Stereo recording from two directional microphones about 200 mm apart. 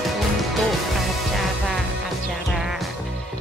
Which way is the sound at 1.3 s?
Centre (ahead or behind).